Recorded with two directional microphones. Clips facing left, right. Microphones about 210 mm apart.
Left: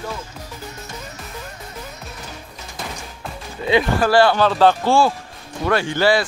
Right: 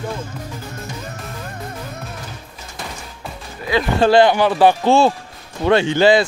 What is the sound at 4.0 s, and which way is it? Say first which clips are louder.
Speech: right 5 dB; 20° right (ahead or behind).